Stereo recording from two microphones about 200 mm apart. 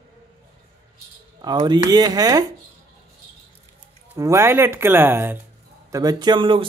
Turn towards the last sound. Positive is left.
turn(degrees=-25)  # may be behind; listen again after turning